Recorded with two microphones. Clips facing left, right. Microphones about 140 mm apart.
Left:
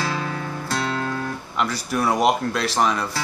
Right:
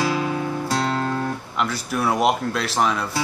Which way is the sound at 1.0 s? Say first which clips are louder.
Right 3 dB; 30° right (ahead or behind).